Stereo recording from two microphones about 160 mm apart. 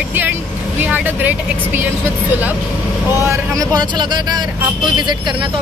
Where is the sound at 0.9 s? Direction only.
10° right (ahead or behind).